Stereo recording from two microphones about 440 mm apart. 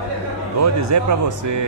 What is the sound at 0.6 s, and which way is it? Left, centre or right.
Speech, right.